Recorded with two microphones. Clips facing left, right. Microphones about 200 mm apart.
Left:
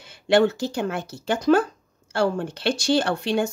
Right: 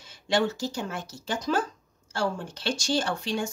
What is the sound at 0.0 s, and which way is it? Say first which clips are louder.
Speech: left 7 dB; 60° left (ahead or behind).